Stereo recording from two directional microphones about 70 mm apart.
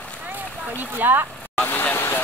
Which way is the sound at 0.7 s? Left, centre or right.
Right.